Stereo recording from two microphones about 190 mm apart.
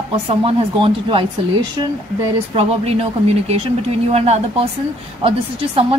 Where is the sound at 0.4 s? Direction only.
25° right (ahead or behind).